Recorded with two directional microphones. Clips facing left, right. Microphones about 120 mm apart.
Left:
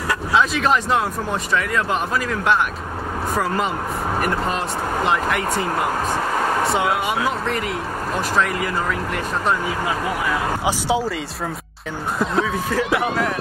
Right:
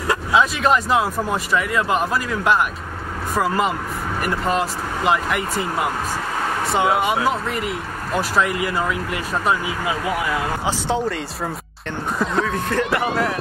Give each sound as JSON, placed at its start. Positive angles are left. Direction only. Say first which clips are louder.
{"t": 0.3, "sound": "speech", "louder": "right 1 dB", "side_deg": 0}
{"t": 6.7, "sound": "speech", "louder": "right 2 dB", "side_deg": 0}
{"t": 10.6, "sound": "speech", "louder": "left 1 dB", "side_deg": 10}
{"t": 12.2, "sound": "speech", "louder": "left 1 dB", "side_deg": 0}